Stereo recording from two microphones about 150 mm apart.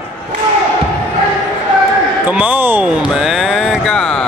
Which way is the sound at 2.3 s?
10° right (ahead or behind).